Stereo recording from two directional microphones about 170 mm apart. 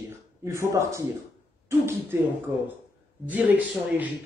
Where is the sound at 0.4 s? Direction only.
15° right (ahead or behind).